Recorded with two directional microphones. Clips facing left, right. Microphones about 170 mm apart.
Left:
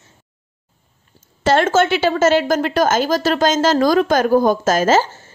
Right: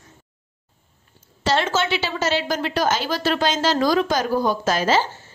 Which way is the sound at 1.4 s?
50° left (ahead or behind).